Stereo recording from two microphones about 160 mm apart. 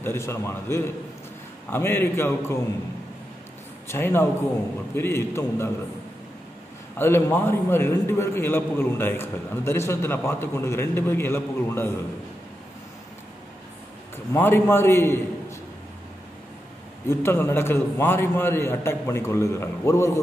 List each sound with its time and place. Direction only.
0.0 s a man's voice: 15° left (ahead or behind)
3.8 s a man's voice: 15° left (ahead or behind)
7.0 s a man's voice: 15° left (ahead or behind)
14.1 s a man's voice: 15° left (ahead or behind)
17.1 s a man's voice: 15° left (ahead or behind)